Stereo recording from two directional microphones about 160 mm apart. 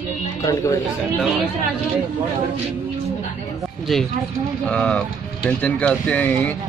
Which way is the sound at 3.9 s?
Centre (ahead or behind).